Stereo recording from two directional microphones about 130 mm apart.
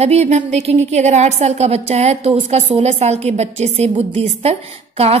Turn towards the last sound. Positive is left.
turn(degrees=-50)  # may be behind; listen again after turning